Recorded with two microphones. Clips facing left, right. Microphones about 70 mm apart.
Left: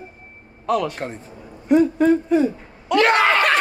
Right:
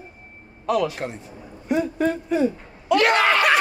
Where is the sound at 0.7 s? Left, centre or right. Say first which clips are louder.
Left 1 dB; centre.